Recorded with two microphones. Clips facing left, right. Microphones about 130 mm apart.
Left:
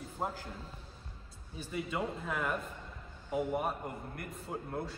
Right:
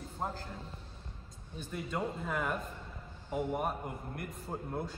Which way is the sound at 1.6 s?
5° left (ahead or behind).